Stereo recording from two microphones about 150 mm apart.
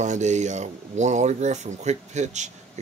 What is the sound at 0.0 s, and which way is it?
Speech, 50° right (ahead or behind).